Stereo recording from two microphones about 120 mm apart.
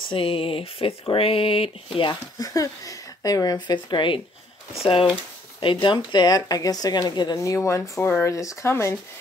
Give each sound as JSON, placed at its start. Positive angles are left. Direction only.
{"t": 0.1, "sound": "speech", "side_deg": 50}
{"t": 2.0, "sound": "speech", "side_deg": 35}